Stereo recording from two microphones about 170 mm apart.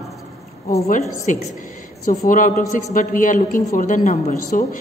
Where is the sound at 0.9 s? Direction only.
50° left (ahead or behind).